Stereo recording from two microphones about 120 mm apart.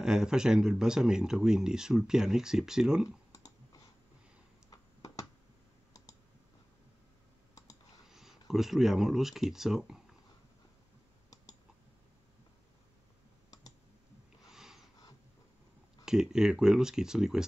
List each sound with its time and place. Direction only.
0.0 s speech: 5° right (ahead or behind)
3.3 s clicking: 30° left (ahead or behind)
4.6 s a sound: 30° left (ahead or behind)
8.1 s speech: 5° right (ahead or behind)
14.5 s sniff: 5° right (ahead or behind)
16.1 s speech: 5° right (ahead or behind)